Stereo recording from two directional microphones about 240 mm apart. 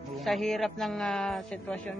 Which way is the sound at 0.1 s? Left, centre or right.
Centre.